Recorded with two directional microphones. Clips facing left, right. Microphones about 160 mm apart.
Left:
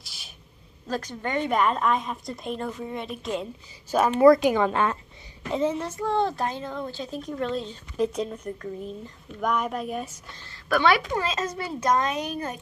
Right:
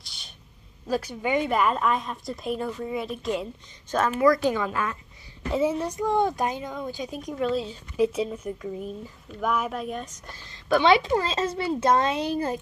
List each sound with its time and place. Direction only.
0.0 s a sound: 5° left (ahead or behind)
0.8 s a woman's voice: 10° right (ahead or behind)
3.9 s speech: 10° left (ahead or behind)
4.6 s speech: 30° left (ahead or behind)
5.5 s a woman's voice: 10° right (ahead or behind); by 10.2 s 5° left (ahead or behind)
10.5 s a woman's voice: 20° right (ahead or behind)